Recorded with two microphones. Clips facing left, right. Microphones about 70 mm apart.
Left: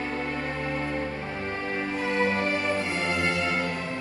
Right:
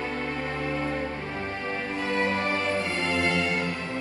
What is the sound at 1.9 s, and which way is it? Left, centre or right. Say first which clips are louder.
Music: left 1 dB; left.